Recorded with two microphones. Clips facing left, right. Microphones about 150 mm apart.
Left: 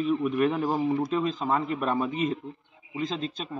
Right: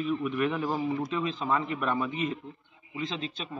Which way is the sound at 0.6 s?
20° left (ahead or behind).